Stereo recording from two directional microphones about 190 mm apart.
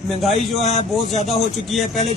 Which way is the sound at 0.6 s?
35° left (ahead or behind).